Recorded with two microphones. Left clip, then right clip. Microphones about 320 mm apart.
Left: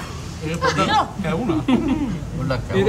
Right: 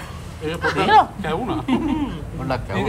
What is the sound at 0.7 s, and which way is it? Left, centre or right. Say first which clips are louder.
Speech: right 6 dB; right.